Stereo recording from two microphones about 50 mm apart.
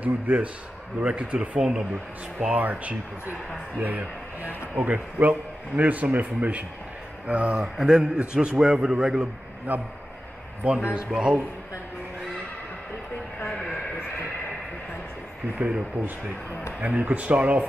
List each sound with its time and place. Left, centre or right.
0.0 s speech: right
1.6 s mantra: centre
2.5 s a man's voice: right
7.6 s mantra: centre
8.2 s speech: centre
8.8 s mantra: centre
9.7 s a man's voice: right; by 11.4 s centre
15.5 s speech: right
17.0 s a man's voice: right